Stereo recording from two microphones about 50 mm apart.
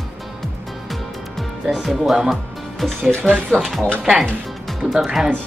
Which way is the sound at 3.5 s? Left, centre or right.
Centre.